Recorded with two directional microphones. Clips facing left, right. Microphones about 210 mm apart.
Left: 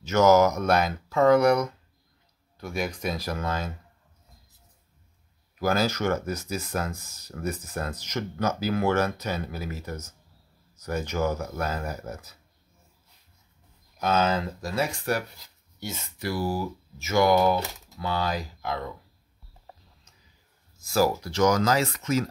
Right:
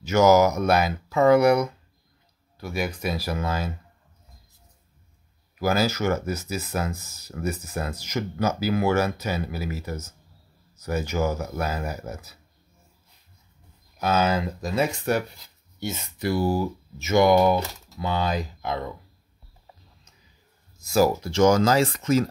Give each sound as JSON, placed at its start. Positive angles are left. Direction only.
{"t": 0.0, "sound": "speech", "side_deg": -10}
{"t": 5.6, "sound": "speech", "side_deg": -5}
{"t": 13.9, "sound": "speech", "side_deg": -5}
{"t": 20.8, "sound": "speech", "side_deg": -20}